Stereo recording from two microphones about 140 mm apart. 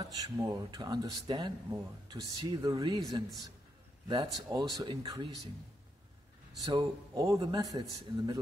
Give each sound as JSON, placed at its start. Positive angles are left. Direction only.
{"t": 0.0, "sound": "speech", "side_deg": -25}
{"t": 6.6, "sound": "speech", "side_deg": -30}